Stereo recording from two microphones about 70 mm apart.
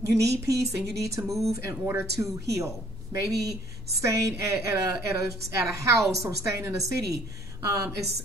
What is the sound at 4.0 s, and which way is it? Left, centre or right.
A woman's voice, right.